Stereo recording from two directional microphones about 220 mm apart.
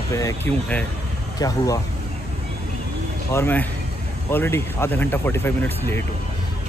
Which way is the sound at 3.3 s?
10° left (ahead or behind).